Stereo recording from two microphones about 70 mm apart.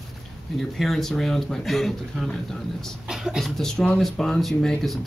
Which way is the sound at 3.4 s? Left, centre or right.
Centre.